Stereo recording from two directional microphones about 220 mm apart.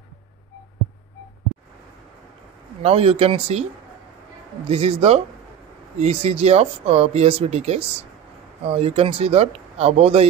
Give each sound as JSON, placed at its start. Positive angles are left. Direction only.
{"t": 2.8, "sound": "speech", "side_deg": -25}
{"t": 4.6, "sound": "speech", "side_deg": -25}